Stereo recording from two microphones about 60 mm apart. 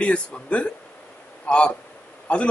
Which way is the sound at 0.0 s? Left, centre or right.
Centre.